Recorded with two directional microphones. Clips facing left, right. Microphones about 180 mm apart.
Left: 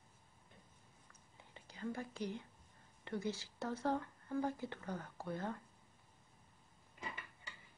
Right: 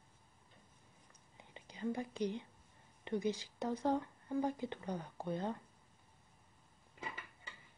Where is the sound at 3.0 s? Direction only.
15° right (ahead or behind).